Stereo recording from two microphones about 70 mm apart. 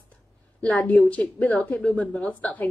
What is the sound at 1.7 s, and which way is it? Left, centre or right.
Speech, centre.